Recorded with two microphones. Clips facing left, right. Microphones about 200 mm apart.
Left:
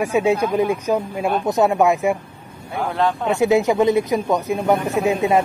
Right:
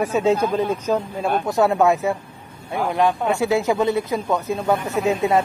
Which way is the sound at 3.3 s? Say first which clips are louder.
Left 3 dB; 20° left (ahead or behind).